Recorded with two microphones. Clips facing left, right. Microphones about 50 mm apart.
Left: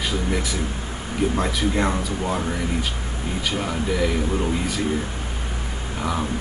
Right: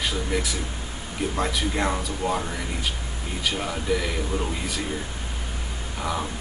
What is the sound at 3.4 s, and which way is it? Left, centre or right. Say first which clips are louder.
Speech: left 2 dB; centre.